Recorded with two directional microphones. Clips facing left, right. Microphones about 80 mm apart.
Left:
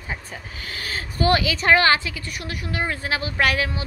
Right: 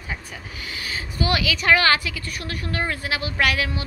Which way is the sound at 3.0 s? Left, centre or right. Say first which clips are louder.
Left 2 dB; left.